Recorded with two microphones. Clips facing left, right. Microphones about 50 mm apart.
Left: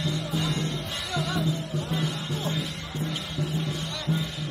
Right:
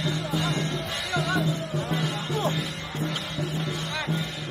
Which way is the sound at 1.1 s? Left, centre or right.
Right.